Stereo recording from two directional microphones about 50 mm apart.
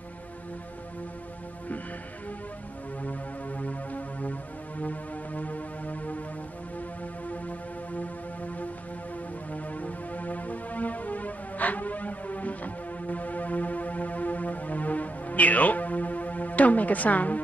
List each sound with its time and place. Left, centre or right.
3.0 s music: left
7.2 s music: left
9.5 s music: left